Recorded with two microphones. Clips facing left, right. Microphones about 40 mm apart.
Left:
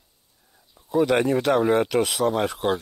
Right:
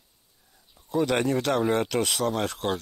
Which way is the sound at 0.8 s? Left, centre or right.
Centre.